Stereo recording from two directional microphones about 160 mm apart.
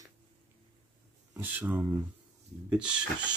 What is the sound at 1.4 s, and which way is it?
Speech, 10° right (ahead or behind).